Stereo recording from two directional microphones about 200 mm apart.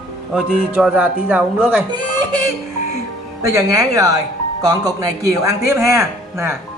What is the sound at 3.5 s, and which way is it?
A man's voice, 15° right (ahead or behind).